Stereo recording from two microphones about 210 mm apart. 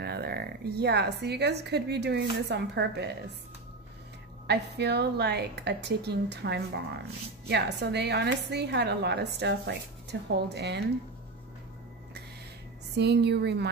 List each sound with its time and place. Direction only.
0.0 s a woman's voice: 50° right (ahead or behind)
4.5 s a woman's voice: 50° right (ahead or behind)
12.9 s a woman's voice: 50° right (ahead or behind)